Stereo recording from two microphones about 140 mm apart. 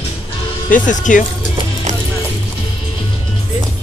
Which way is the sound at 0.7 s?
65° left (ahead or behind).